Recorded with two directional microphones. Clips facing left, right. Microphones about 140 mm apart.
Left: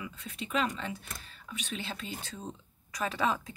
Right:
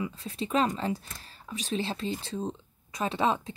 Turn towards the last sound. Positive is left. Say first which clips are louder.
# right 4 dB
turn(degrees=-25)  # may be behind; listen again after turning